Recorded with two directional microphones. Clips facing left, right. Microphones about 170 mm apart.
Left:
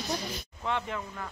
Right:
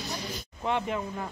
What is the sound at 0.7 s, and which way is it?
Speech, 15° right (ahead or behind).